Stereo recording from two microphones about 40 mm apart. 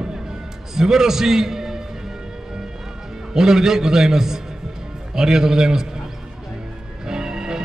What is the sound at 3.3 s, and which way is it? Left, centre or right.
A man's voice, centre.